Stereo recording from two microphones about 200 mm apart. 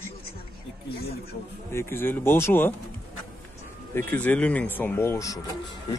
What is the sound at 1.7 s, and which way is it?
Speech, 10° left (ahead or behind).